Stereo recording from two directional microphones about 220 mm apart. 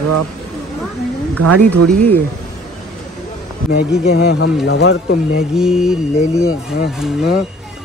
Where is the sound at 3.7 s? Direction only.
45° left (ahead or behind).